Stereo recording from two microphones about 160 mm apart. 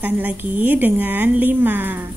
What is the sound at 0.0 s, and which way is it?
A woman's voice, 10° right (ahead or behind).